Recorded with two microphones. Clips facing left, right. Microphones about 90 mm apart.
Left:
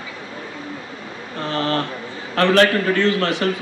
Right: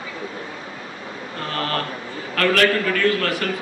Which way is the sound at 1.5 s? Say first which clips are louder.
Left 4 dB; 25° left (ahead or behind).